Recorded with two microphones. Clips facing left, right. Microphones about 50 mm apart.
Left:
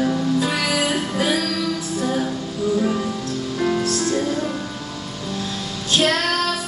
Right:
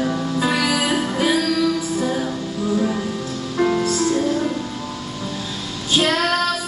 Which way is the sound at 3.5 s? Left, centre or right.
Centre.